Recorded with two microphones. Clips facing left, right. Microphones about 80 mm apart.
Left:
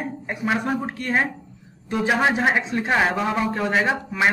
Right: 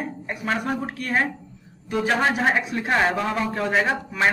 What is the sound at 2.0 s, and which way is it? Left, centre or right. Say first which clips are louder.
A man's voice: left 1 dB; centre.